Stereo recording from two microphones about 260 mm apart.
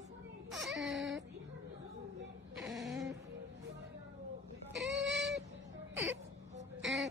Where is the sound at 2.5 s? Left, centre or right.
Centre.